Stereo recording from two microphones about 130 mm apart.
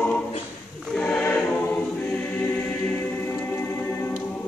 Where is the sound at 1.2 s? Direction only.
15° left (ahead or behind).